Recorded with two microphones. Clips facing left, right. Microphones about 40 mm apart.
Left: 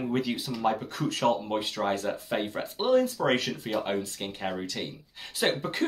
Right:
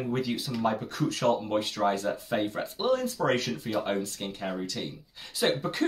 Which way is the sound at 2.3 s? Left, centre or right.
Centre.